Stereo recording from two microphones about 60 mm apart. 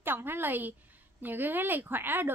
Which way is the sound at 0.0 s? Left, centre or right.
Right.